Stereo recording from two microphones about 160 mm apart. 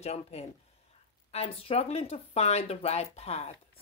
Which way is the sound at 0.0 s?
40° left (ahead or behind).